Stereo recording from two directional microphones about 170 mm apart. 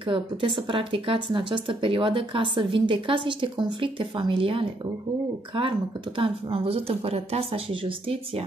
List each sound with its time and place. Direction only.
0.1 s speech: 30° right (ahead or behind)
6.1 s speech: 30° right (ahead or behind)